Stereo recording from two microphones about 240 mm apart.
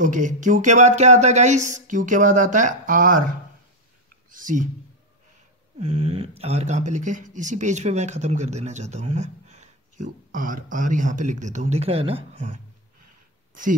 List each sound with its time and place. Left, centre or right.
0.0 s a sound: right
4.3 s speech: right
5.8 s speech: right